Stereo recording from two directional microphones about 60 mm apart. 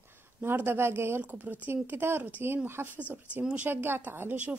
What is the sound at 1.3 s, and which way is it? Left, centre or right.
A woman's voice, right.